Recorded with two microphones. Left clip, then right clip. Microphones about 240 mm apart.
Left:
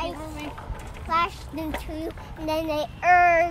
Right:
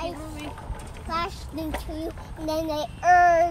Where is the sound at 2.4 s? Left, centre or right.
Centre.